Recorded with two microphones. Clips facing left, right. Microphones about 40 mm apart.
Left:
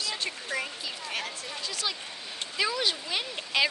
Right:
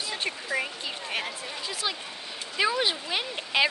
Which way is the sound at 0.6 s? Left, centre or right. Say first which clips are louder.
Right 3 dB; centre.